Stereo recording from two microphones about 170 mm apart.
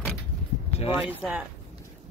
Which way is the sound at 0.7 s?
35° left (ahead or behind).